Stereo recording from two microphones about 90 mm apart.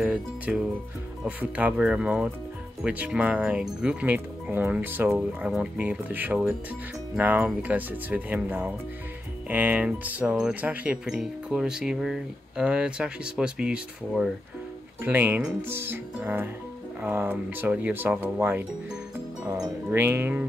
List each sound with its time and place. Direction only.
0.0 s speech: 10° right (ahead or behind)
15.0 s speech: 20° right (ahead or behind)
19.9 s speech: 25° right (ahead or behind)